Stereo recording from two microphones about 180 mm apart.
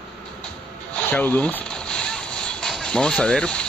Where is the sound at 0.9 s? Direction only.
10° left (ahead or behind).